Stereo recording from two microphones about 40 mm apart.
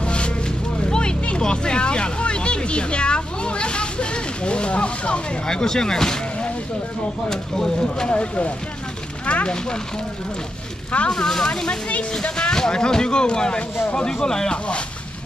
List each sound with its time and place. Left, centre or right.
0.0 s vehicle: left
7.2 s speech: centre
8.1 s speech: left
10.9 s speech: left
11.1 s speech: centre